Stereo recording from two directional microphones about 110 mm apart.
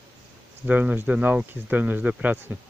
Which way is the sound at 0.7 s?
15° right (ahead or behind).